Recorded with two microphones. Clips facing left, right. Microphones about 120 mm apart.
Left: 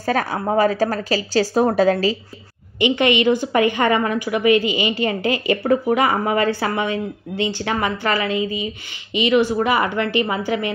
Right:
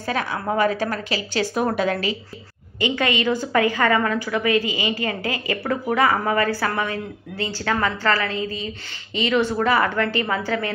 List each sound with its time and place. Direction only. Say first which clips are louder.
0.0 s a woman's voice: left 4 dB; 40° left (ahead or behind)
2.8 s a woman's voice: left 5 dB; 20° left (ahead or behind)